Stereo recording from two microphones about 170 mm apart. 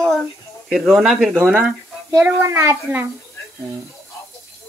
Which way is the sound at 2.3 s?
15° right (ahead or behind).